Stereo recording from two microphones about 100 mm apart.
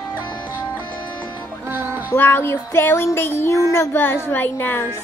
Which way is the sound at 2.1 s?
20° left (ahead or behind).